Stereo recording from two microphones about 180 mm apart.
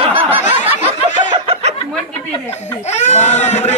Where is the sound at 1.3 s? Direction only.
30° right (ahead or behind).